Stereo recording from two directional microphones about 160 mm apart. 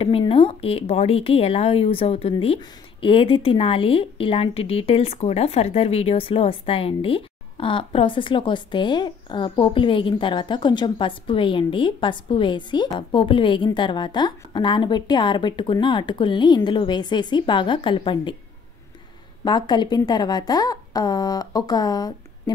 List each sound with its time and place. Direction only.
0.2 s speech: 35° left (ahead or behind)
19.4 s a woman's voice: 25° left (ahead or behind)